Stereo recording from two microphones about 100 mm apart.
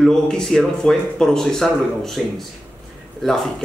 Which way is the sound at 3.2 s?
5° left (ahead or behind).